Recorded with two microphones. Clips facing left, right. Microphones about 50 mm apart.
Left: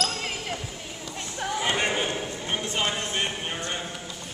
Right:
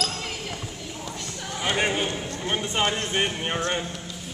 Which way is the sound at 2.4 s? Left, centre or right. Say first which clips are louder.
Right 4 dB; centre.